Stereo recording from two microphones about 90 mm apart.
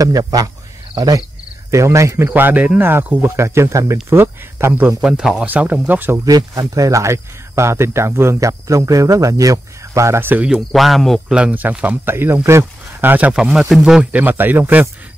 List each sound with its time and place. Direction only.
0.0 s speech: 45° right (ahead or behind)
2.3 s speech: 20° right (ahead or behind)
4.8 s speech: 5° right (ahead or behind)
5.5 s speech: 20° right (ahead or behind)
6.1 s speech: 40° right (ahead or behind)
10.7 s speech: centre (ahead or behind)
11.3 s speech: 15° right (ahead or behind)
12.4 s a sound: 30° right (ahead or behind)
13.3 s speech: 5° right (ahead or behind)
14.1 s speech: 20° right (ahead or behind)